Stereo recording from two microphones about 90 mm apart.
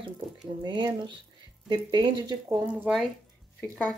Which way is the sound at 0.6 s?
55° right (ahead or behind).